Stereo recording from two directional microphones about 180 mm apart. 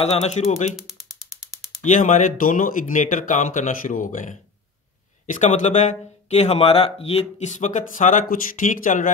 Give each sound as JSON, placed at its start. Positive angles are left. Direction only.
{"t": 0.0, "sound": "speech", "side_deg": 35}
{"t": 1.8, "sound": "speech", "side_deg": 45}